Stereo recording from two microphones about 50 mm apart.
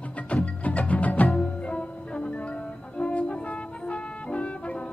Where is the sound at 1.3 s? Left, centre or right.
Left.